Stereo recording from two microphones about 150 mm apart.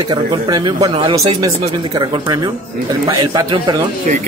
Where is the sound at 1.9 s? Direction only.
30° right (ahead or behind).